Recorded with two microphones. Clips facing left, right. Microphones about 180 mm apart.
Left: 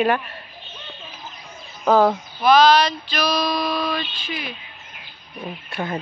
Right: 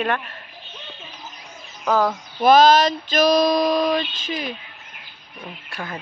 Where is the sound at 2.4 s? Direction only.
45° right (ahead or behind).